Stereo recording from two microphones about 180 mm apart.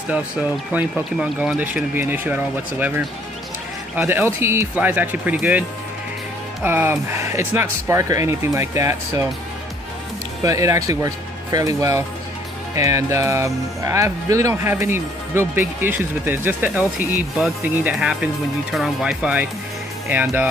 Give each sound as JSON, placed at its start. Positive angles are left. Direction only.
{"t": 0.7, "sound": "speech", "side_deg": -5}
{"t": 3.9, "sound": "speech", "side_deg": -10}
{"t": 10.4, "sound": "speech", "side_deg": -20}